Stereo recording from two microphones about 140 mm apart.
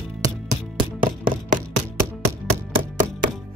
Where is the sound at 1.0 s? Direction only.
80° right.